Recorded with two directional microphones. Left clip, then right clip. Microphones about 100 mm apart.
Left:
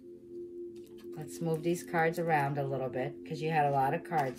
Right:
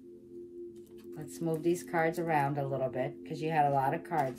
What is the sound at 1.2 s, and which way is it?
Speech, 25° right (ahead or behind).